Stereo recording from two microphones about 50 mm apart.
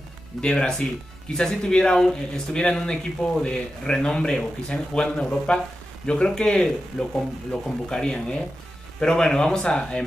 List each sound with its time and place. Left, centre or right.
0.4 s speech: centre